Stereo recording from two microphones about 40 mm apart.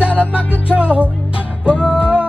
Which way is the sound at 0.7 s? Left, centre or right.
Right.